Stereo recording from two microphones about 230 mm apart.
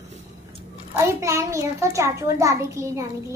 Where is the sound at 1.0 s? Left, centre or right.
Centre.